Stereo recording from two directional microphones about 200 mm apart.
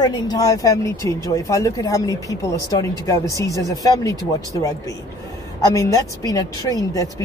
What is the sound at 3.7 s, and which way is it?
Speech, 15° left (ahead or behind).